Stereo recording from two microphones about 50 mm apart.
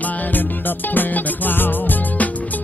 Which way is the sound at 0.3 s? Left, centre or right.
Left.